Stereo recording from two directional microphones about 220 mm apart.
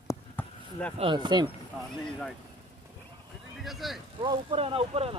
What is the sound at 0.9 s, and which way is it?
Speech, 20° right (ahead or behind).